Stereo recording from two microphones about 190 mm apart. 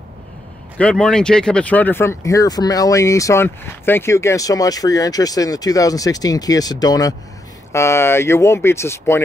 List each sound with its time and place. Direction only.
0.7 s speech: 5° left (ahead or behind)